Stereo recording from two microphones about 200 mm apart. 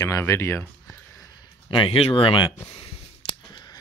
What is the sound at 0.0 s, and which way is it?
Speech, 15° left (ahead or behind).